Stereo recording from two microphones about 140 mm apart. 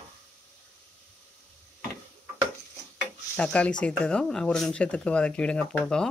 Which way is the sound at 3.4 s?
10° left (ahead or behind).